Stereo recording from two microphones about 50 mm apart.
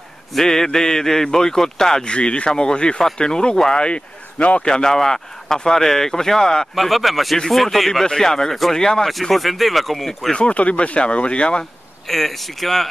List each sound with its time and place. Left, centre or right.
0.3 s speech: centre
2.1 s speech: left
3.7 s speech: left
4.6 s speech: centre
6.7 s speech: centre
9.1 s speech: centre
10.3 s speech: left
12.1 s speech: centre